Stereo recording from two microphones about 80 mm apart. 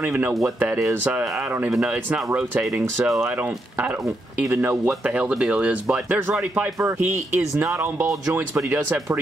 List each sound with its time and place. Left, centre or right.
0.0 s speech: right
1.7 s speech: centre
4.5 s speech: right